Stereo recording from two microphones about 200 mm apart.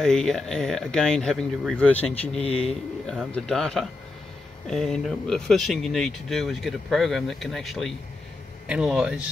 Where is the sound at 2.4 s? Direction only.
30° left (ahead or behind).